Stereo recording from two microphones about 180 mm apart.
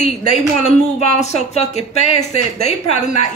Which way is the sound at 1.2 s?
40° left (ahead or behind).